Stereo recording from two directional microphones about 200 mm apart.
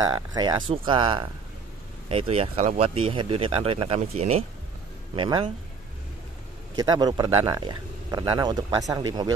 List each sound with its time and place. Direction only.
0.0 s speech: 20° right (ahead or behind)
6.8 s speech: 20° right (ahead or behind)